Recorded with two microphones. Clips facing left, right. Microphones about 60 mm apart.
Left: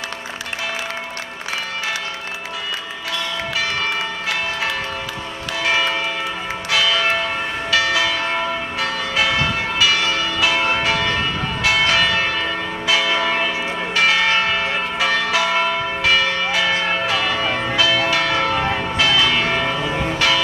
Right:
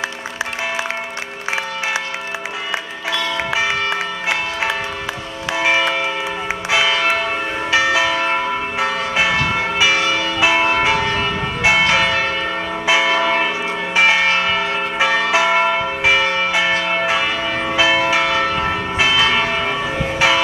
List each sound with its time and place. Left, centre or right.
5.5 s church bell: centre
19.0 s church bell: centre